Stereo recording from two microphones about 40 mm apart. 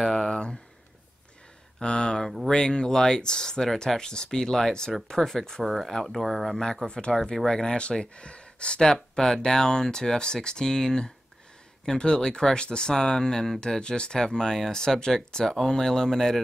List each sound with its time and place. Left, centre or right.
0.1 s a sound: left
1.8 s speech: left
5.6 s speech: centre
6.6 s speech: centre